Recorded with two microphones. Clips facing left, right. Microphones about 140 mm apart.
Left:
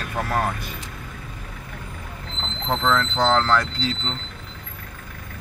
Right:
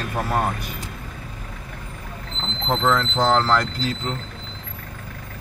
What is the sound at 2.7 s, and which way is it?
Speech, 10° right (ahead or behind).